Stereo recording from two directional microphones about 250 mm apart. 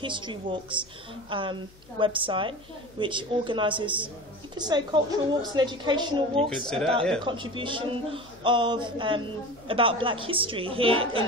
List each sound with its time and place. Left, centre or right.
0.0 s a man's voice: centre
6.3 s speech: centre
7.2 s a man's voice: centre